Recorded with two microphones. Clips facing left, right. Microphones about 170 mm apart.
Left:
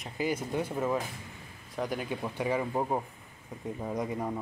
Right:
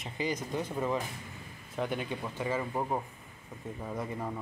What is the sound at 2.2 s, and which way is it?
Speech, 15° left (ahead or behind).